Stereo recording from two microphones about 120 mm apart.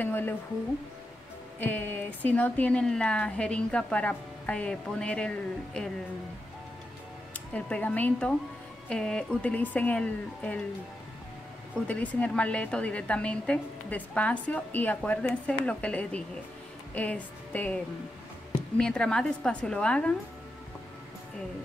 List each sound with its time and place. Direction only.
0.0 s a woman's voice: 15° left (ahead or behind)
1.6 s speech: 15° left (ahead or behind)
7.3 s speech: 10° left (ahead or behind)
11.9 s speech: 10° left (ahead or behind)
18.8 s speech: 5° left (ahead or behind)